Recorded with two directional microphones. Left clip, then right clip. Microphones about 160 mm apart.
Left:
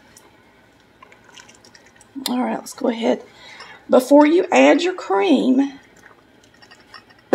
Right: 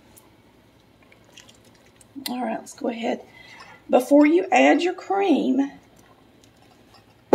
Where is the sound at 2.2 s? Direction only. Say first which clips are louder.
Left 5 dB; 60° left (ahead or behind).